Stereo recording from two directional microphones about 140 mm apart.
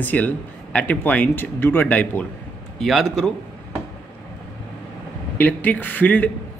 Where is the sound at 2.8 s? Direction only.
Centre (ahead or behind).